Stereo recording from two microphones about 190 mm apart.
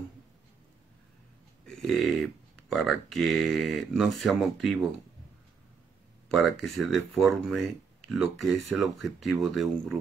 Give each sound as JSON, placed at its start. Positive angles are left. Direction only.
{"t": 1.7, "sound": "speech", "side_deg": 0}
{"t": 6.2, "sound": "speech", "side_deg": 0}